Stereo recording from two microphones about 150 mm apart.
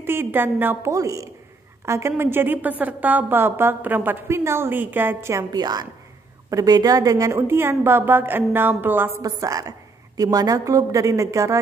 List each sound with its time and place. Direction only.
0.0 s a woman's voice: 15° right (ahead or behind)